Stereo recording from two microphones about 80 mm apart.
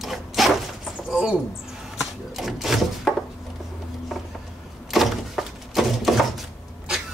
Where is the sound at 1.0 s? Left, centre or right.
Centre.